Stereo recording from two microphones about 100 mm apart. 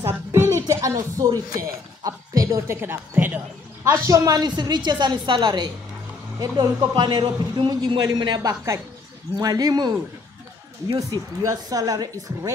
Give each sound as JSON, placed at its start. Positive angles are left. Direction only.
{"t": 0.0, "sound": "a man's voice", "side_deg": -25}
{"t": 8.5, "sound": "speech", "side_deg": -30}
{"t": 11.0, "sound": "speech", "side_deg": -35}